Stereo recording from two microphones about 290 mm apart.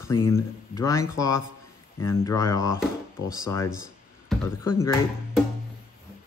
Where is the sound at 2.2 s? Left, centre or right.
Centre.